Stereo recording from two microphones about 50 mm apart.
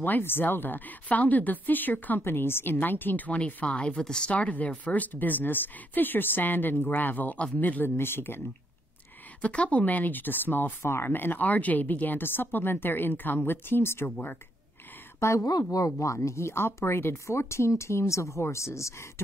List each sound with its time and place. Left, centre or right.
0.0 s speech: left; by 4.3 s centre
4.3 s speech: left
9.4 s speech: left
10.8 s speech: left
11.1 s speech: left
15.1 s speech: left